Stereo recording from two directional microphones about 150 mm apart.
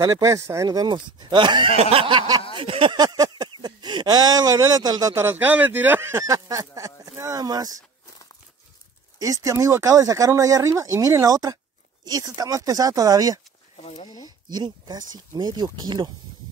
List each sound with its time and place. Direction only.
0.0 s speech: 25° right (ahead or behind)
1.8 s a sound: 40° right (ahead or behind); by 7.8 s 25° right (ahead or behind)
9.2 s speech: 20° right (ahead or behind)
13.7 s speech: 40° left (ahead or behind)
14.0 s a sound: 25° left (ahead or behind)
14.5 s speech: 30° right (ahead or behind)